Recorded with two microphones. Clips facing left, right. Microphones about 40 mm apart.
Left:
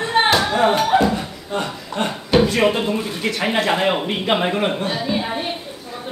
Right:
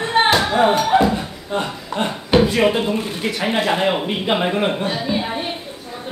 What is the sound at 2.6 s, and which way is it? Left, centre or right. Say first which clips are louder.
Speech: right 1 dB; centre.